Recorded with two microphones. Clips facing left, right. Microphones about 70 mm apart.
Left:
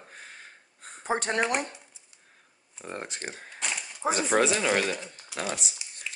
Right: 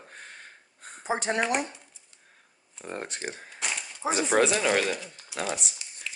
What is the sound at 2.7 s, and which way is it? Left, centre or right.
Speech, centre.